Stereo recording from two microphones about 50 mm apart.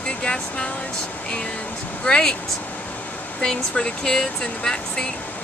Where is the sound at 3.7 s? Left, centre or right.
Centre.